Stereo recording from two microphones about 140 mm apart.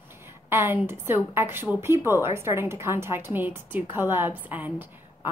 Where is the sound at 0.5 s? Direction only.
15° right (ahead or behind).